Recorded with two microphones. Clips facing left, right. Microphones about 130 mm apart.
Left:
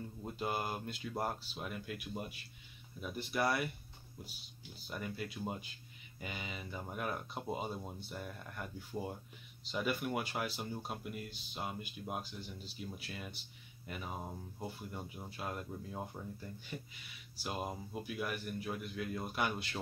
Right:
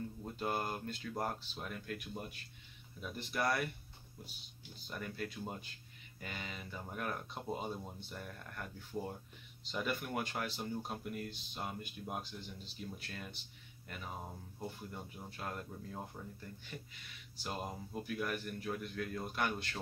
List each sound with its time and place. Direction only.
0.2 s speech: 10° left (ahead or behind)
4.8 s speech: 10° left (ahead or behind)